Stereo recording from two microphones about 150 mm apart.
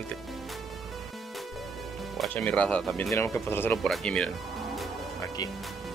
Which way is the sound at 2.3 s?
10° left (ahead or behind).